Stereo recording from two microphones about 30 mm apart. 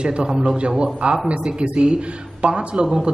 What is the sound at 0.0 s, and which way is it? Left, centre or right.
A man's voice, right.